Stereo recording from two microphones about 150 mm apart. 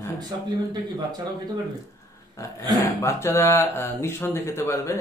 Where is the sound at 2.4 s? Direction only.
20° left (ahead or behind).